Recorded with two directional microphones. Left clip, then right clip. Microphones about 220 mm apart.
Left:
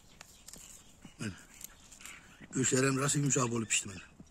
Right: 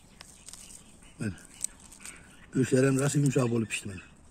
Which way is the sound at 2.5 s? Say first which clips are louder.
Right 5 dB; 20° right (ahead or behind).